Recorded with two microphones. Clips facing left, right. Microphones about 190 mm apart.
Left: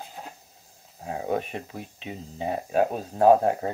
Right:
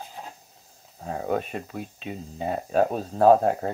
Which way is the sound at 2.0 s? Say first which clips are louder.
Left 1 dB; 20° left (ahead or behind).